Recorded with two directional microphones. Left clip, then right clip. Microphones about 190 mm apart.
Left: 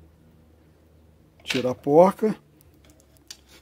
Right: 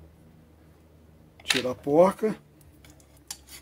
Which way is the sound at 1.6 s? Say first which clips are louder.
Left 5 dB; 50° left (ahead or behind).